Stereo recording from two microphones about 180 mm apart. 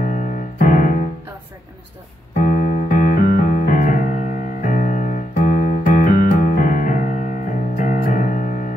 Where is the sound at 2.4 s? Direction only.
50° left (ahead or behind).